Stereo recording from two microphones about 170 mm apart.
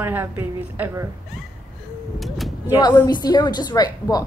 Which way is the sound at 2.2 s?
Centre (ahead or behind).